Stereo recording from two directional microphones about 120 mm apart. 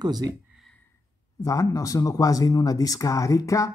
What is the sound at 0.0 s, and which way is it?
Speech, 35° right (ahead or behind).